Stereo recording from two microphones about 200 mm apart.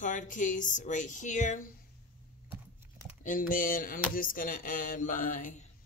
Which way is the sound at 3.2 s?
40° left (ahead or behind).